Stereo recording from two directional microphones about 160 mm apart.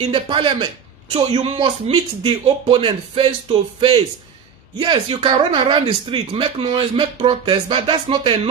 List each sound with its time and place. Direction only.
0.0 s speech: 35° right (ahead or behind)